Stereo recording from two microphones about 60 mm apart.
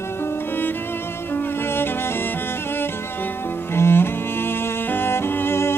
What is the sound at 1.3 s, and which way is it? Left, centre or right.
Music, left.